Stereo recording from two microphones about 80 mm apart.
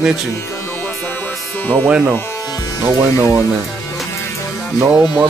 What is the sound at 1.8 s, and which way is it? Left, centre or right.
Speech, right.